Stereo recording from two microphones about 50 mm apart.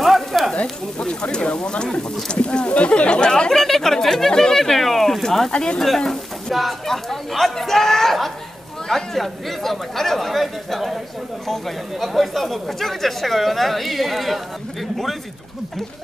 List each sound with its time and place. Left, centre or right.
0.0 s sizzle: centre
0.6 s speech: left; by 5.5 s centre
5.5 s speech: left
5.8 s speech: centre